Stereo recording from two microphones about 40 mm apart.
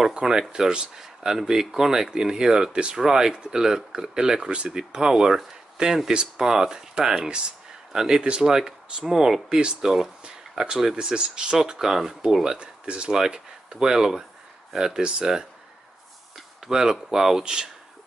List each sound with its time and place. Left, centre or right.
0.1 s speech: centre
7.9 s speech: centre
8.2 s speech: right
8.5 s speech: centre
9.5 s speech: right
11.9 s speech: centre
12.5 s speech: right; by 15.0 s centre
15.0 s speech: right
16.3 s speech: centre